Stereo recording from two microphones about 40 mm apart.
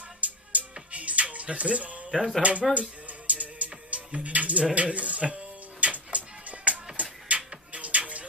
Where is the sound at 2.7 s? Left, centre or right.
Right.